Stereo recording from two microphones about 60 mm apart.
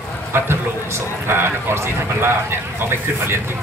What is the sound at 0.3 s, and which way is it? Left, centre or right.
Speech, right.